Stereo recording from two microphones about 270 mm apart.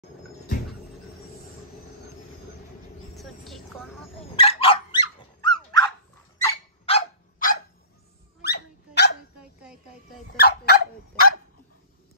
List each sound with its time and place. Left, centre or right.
3.2 s vehicle: centre
4.4 s dog: left
9.4 s a sound: centre
10.3 s fowl: left